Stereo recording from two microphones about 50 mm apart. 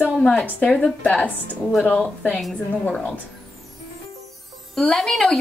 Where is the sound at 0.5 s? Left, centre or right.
Left.